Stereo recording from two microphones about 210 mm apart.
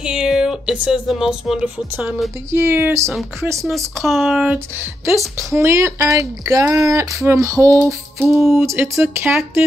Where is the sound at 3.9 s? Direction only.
Centre (ahead or behind).